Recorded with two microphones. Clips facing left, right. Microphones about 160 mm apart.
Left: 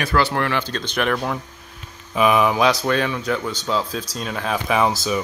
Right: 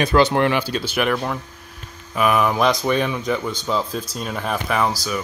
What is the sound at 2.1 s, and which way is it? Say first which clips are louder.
Speech: left 1 dB; 15° left (ahead or behind).